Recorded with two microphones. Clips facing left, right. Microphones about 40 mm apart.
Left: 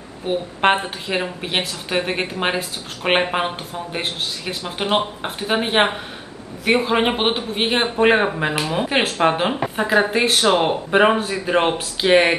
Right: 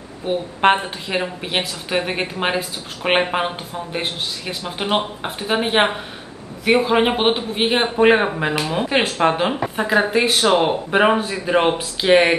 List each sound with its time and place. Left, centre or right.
0.3 s speech: centre